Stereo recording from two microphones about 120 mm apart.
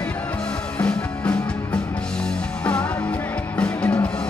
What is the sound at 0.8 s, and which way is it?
Music, 10° left (ahead or behind).